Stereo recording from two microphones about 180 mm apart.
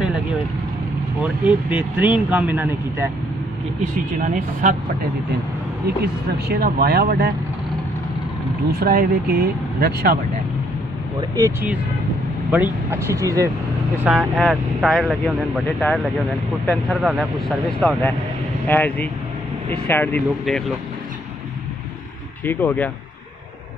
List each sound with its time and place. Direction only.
1.2 s speech: 10° right (ahead or behind)
4.2 s speech: 50° right (ahead or behind)
6.5 s speech: 60° right (ahead or behind)
8.7 s speech: 55° right (ahead or behind)
11.1 s speech: 20° right (ahead or behind)
14.0 s speech: centre (ahead or behind)
20.4 s speech: centre (ahead or behind)
22.4 s speech: 10° left (ahead or behind)